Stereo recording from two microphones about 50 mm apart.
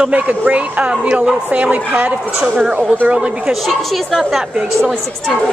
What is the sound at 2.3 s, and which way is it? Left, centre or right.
Speech, centre.